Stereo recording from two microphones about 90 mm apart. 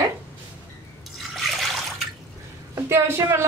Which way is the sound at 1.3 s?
Centre (ahead or behind).